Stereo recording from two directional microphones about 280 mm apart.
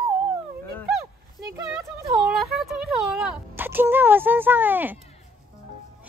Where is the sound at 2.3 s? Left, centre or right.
Centre.